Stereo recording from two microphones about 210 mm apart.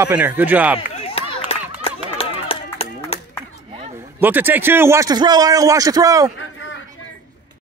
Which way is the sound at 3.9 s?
10° right (ahead or behind).